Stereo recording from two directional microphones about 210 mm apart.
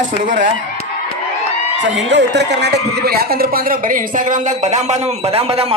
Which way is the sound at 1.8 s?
60° right (ahead or behind).